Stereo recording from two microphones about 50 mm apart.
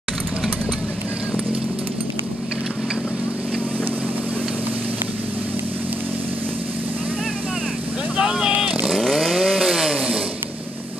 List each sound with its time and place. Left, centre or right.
8.2 s vehicle: centre
9.1 s chainsaw: centre
9.9 s a sound: right